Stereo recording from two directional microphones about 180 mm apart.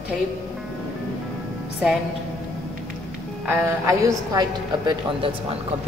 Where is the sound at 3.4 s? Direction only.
20° right (ahead or behind).